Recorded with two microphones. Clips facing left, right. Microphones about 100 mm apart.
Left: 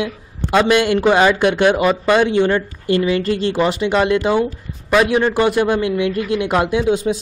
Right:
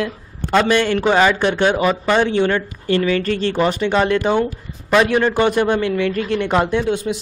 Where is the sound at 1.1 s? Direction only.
15° left (ahead or behind).